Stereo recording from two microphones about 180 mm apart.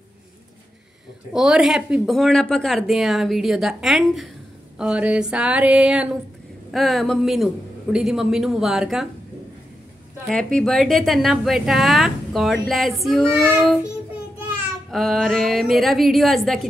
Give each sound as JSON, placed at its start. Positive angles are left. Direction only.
{"t": 1.3, "sound": "a woman's voice", "side_deg": -5}
{"t": 4.7, "sound": "a sound", "side_deg": -5}
{"t": 6.7, "sound": "a woman's voice", "side_deg": 0}
{"t": 10.2, "sound": "a woman's voice", "side_deg": 5}
{"t": 14.9, "sound": "a woman's voice", "side_deg": 0}